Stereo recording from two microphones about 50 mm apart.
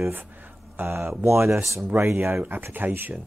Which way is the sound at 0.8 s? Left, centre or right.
Right.